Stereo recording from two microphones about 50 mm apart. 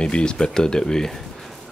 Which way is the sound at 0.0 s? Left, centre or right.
Centre.